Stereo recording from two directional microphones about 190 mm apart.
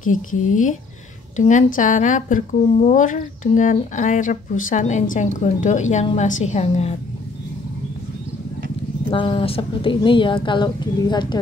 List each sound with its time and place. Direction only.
0.0 s a woman's voice: 45° left (ahead or behind)
9.1 s a woman's voice: 25° left (ahead or behind)